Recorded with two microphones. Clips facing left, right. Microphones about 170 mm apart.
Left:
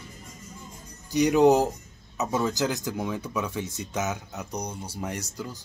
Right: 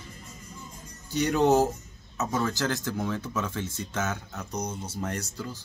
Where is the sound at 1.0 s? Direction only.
15° left (ahead or behind).